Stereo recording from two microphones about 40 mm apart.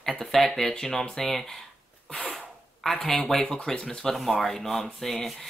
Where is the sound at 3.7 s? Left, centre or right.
Left.